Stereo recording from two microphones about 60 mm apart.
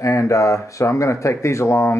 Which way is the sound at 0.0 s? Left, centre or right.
Left.